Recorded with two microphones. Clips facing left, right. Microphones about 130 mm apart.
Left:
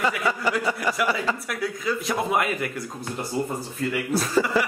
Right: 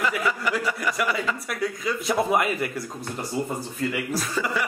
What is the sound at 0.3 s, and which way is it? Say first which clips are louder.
Speech: left 1 dB; 30° left (ahead or behind).